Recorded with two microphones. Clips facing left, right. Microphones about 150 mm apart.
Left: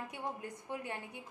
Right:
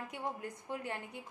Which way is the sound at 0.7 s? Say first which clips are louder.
Right 1 dB; 15° left (ahead or behind).